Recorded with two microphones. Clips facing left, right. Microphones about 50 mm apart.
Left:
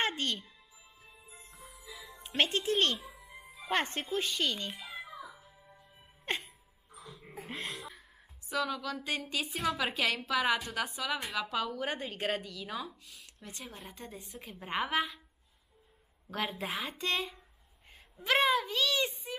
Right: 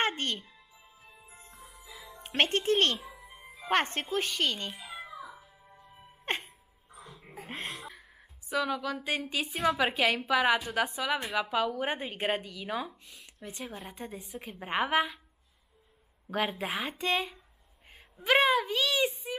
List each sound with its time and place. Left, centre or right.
0.0 s music: right
1.5 s music: centre
1.8 s music: right
2.2 s speech: right
5.0 s music: centre
6.3 s music: right
6.9 s dog: right
7.3 s a sound: right
7.7 s a sound: centre
8.5 s speech: centre
16.3 s speech: centre